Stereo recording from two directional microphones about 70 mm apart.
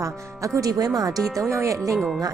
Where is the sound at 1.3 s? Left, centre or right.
Right.